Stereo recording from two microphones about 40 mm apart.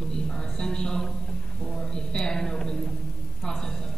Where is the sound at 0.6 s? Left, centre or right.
Left.